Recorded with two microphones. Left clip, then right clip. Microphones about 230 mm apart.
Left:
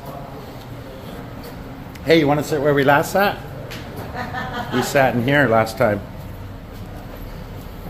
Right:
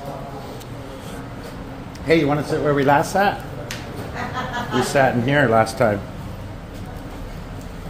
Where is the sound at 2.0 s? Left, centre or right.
Centre.